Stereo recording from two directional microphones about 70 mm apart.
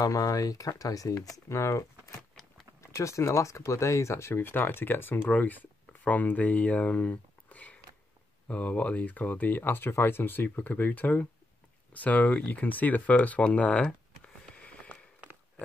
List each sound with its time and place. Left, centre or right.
0.1 s speech: left
4.4 s speech: left